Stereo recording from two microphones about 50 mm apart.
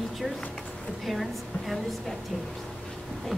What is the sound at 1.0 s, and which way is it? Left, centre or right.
A woman's voice, centre.